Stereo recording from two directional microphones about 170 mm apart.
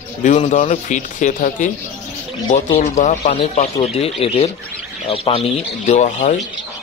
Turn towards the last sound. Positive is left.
turn(degrees=45)  # may be behind; listen again after turning